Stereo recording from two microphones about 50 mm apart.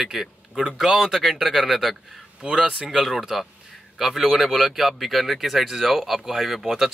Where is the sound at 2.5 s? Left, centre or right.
Centre.